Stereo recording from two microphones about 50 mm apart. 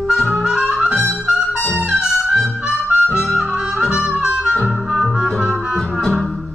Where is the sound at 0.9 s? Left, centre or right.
Right.